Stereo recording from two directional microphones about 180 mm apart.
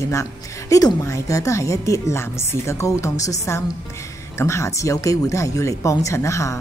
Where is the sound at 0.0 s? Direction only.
15° left (ahead or behind).